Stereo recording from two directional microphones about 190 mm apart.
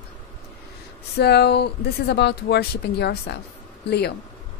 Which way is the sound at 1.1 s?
60° left (ahead or behind).